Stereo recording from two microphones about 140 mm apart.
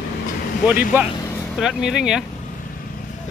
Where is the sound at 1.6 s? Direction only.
5° right (ahead or behind).